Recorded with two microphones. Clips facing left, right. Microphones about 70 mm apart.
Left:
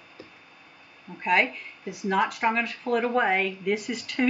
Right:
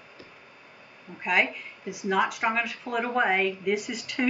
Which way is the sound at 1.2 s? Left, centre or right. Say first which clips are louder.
Left 2 dB; centre.